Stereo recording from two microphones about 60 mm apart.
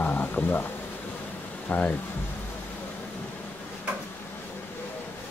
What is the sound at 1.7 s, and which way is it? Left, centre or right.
Speech, left.